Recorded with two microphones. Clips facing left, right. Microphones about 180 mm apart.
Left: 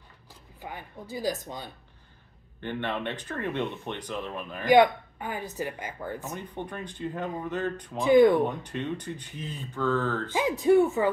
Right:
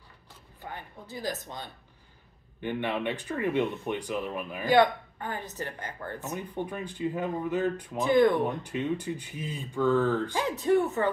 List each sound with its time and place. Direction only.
0.6 s speech: 10° left (ahead or behind)
2.6 s speech: 10° right (ahead or behind)
4.6 s speech: 15° left (ahead or behind)
6.3 s speech: 10° right (ahead or behind)
8.0 s speech: 15° left (ahead or behind)
8.6 s speech: 10° right (ahead or behind)
10.3 s speech: 10° left (ahead or behind)